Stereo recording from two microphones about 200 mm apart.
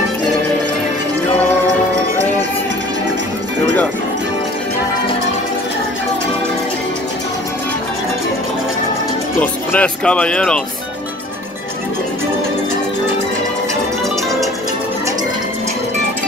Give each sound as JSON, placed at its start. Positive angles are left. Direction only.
{"t": 9.4, "sound": "speech", "side_deg": 5}